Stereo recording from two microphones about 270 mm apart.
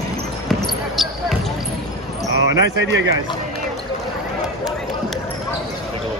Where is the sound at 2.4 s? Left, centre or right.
Right.